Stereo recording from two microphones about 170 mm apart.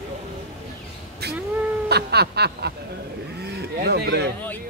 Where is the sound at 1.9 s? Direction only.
75° right (ahead or behind).